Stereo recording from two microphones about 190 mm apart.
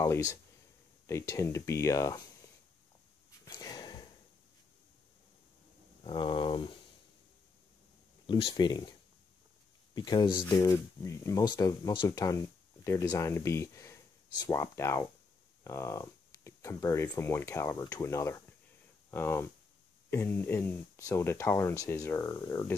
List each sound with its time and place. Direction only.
0.0 s speech: 15° left (ahead or behind)
3.4 s a sound: 20° left (ahead or behind)
6.0 s speech: 25° left (ahead or behind)
8.3 s speech: 25° left (ahead or behind)
9.9 s speech: 25° left (ahead or behind)